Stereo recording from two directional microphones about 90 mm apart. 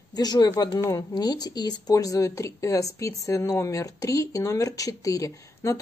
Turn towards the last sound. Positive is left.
turn(degrees=35)  # may be behind; listen again after turning